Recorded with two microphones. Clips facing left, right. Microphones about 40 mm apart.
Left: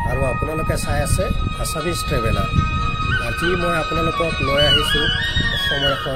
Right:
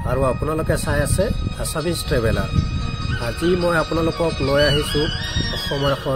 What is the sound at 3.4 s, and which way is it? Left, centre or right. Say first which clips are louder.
Speech: right 4 dB; left.